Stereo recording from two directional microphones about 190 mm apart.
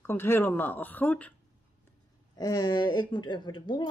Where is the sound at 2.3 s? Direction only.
20° left (ahead or behind).